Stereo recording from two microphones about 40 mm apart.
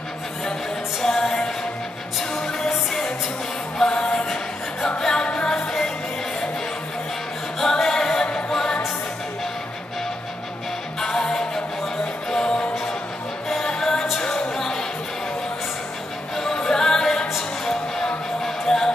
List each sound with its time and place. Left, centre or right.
1.0 s music: centre
7.6 s music: centre
11.0 s music: centre
13.7 s music: centre
16.5 s music: centre